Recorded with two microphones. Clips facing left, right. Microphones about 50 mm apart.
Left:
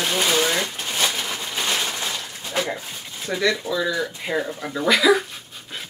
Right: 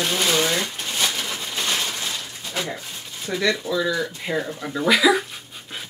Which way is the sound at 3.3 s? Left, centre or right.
Centre.